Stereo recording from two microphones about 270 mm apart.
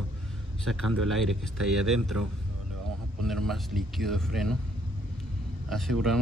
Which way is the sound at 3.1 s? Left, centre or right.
Centre.